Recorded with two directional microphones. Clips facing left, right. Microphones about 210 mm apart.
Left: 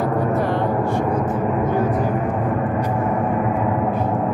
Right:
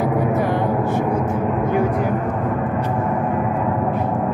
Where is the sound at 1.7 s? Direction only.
10° right (ahead or behind).